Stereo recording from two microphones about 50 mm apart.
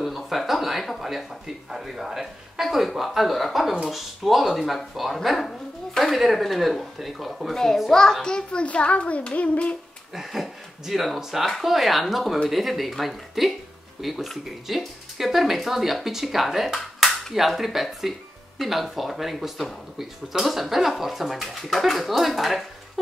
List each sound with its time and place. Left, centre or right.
0.0 s a sound: centre
1.7 s a child's voice: centre; by 9.8 s left
10.1 s speech: centre